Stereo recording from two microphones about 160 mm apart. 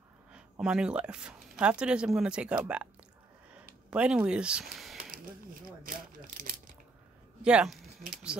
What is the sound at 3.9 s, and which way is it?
Speech, 5° right (ahead or behind).